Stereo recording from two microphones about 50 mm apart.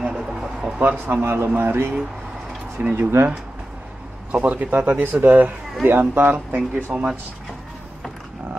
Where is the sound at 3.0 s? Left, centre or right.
Right.